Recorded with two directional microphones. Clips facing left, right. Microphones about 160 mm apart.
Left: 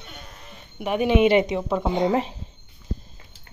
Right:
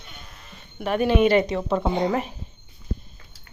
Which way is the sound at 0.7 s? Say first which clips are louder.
Left 1 dB; 10° left (ahead or behind).